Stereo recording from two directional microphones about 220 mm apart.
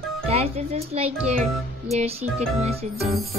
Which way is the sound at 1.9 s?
30° right (ahead or behind).